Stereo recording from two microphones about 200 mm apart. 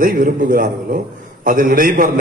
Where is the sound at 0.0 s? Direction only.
45° right (ahead or behind).